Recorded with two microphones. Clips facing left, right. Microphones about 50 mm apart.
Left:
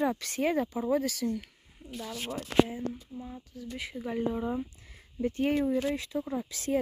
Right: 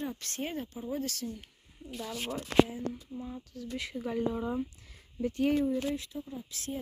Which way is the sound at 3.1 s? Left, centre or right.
Centre.